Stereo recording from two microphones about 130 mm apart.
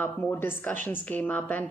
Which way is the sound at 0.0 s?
15° left (ahead or behind).